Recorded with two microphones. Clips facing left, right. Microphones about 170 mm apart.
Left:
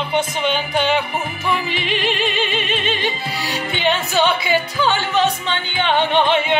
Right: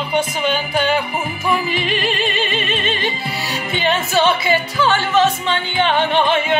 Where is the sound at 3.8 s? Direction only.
15° left (ahead or behind).